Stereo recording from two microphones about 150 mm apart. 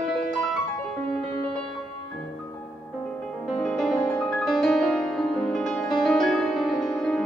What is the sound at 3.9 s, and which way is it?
Music, 20° left (ahead or behind).